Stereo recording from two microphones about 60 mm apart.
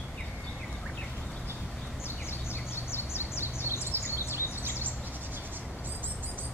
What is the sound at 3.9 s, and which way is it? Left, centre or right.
Bird, right.